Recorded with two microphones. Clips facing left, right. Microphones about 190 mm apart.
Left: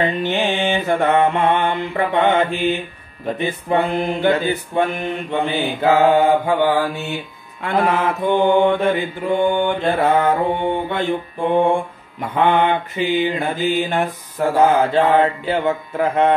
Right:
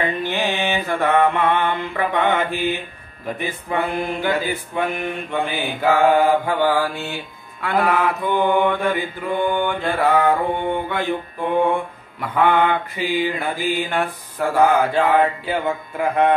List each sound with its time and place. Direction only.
0.0 s mantra: 20° left (ahead or behind)